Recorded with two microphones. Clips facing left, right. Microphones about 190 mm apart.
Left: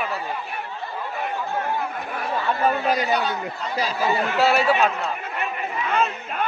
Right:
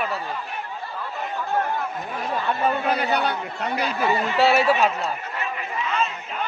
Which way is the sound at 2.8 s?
60° right (ahead or behind).